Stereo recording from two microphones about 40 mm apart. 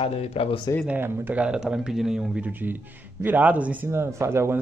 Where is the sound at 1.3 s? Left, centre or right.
Right.